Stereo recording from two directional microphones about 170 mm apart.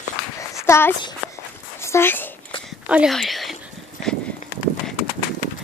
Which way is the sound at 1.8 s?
15° left (ahead or behind).